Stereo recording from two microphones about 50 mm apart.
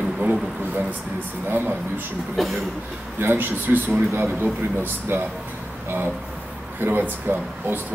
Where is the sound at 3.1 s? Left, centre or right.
Right.